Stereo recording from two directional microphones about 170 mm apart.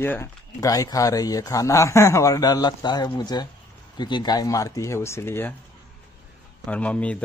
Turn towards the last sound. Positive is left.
turn(degrees=5)  # may be behind; listen again after turning